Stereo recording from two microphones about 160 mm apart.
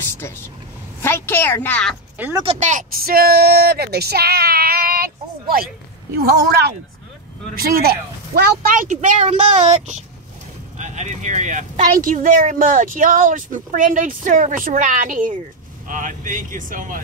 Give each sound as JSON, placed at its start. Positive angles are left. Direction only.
{"t": 1.0, "sound": "speech", "side_deg": 15}
{"t": 2.4, "sound": "speech", "side_deg": -45}
{"t": 3.0, "sound": "speech", "side_deg": -70}
{"t": 6.1, "sound": "a woman's voice", "side_deg": -90}
{"t": 7.5, "sound": "speech", "side_deg": -65}